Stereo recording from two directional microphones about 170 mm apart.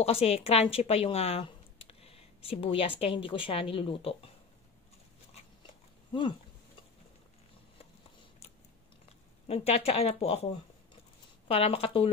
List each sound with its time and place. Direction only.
0.0 s speech: 35° left (ahead or behind)
9.5 s speech: 35° left (ahead or behind)